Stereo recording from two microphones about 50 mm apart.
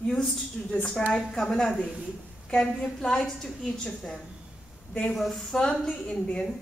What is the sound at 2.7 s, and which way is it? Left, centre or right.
A woman's voice, centre.